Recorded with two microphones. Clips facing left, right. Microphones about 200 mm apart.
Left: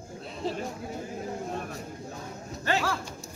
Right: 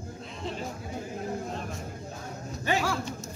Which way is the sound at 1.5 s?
55° left (ahead or behind).